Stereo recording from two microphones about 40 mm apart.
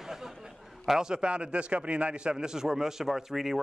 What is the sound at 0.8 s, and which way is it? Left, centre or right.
A man's voice, centre.